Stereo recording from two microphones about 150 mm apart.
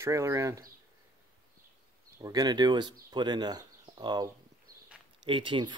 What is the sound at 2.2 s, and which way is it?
Speech, 25° right (ahead or behind).